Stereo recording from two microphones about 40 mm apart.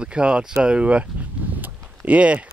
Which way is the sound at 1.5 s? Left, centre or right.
Right.